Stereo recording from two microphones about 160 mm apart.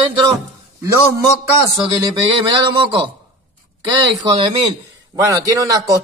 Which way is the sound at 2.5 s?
30° right (ahead or behind).